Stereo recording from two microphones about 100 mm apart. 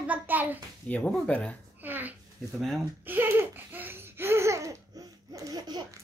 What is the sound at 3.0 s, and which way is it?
Laughter, 20° right (ahead or behind).